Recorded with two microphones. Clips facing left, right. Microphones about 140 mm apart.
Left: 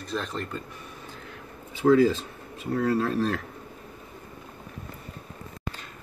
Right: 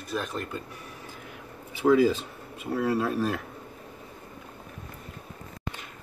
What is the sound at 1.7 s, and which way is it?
Speech, 10° right (ahead or behind).